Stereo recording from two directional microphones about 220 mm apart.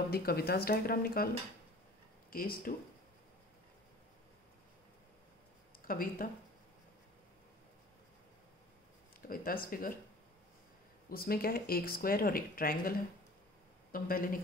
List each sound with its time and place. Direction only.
0.1 s speech: 45° left (ahead or behind)
2.3 s speech: 40° left (ahead or behind)
5.9 s speech: 40° left (ahead or behind)
9.3 s speech: 40° left (ahead or behind)
11.1 s speech: 40° left (ahead or behind)
13.9 s speech: 40° left (ahead or behind)